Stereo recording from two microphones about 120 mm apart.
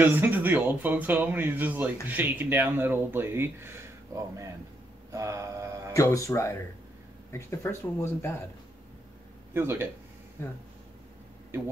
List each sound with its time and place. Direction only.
0.0 s speech: 15° right (ahead or behind)
5.1 s mantra: 25° right (ahead or behind)
5.9 s speech: 25° left (ahead or behind)
9.5 s speech: 20° right (ahead or behind)
11.5 s speech: 20° right (ahead or behind)